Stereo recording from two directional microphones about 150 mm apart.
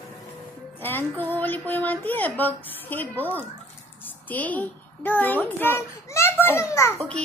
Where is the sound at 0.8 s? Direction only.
15° left (ahead or behind).